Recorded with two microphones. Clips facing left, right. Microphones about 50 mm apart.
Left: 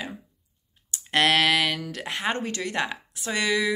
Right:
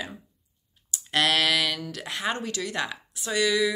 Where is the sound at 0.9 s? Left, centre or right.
Left.